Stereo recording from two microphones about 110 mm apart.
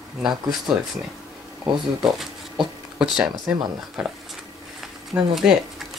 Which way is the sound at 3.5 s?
10° right (ahead or behind).